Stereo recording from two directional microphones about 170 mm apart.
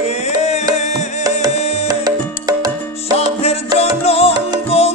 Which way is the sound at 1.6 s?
40° left (ahead or behind).